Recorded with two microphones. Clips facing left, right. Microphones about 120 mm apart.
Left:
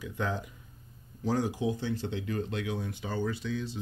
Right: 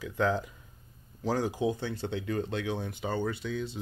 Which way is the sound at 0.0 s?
90° right.